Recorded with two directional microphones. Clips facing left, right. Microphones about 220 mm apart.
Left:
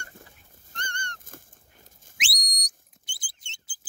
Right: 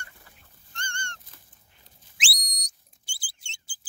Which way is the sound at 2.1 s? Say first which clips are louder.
Even; 30° right (ahead or behind).